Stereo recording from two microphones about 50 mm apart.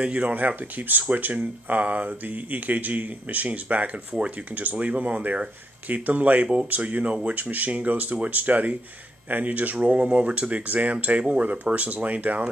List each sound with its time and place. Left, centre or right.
0.0 s speech: right